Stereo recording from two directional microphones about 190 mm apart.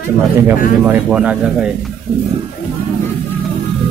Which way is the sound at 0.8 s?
10° right (ahead or behind).